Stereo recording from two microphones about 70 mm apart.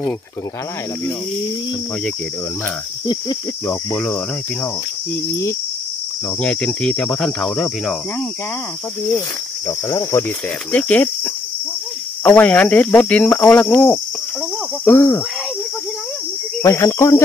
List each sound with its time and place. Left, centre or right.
6.4 s cricket: centre
10.1 s cricket: left
10.7 s cricket: left
12.2 s cricket: left
16.6 s cricket: left